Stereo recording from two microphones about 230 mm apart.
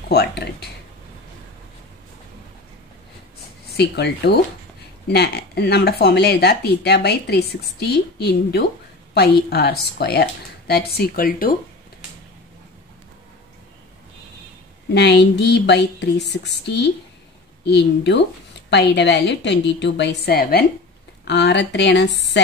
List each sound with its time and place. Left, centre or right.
0.1 s speech: left
3.7 s speech: left
15.0 s speech: left